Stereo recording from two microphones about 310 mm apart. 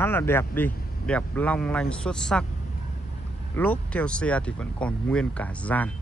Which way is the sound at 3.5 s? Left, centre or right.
Centre.